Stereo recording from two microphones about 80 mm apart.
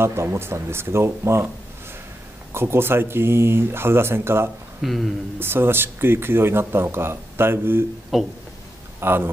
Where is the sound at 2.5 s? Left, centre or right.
Right.